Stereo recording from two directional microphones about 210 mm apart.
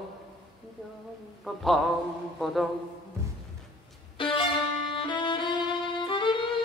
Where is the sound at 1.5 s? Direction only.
Centre (ahead or behind).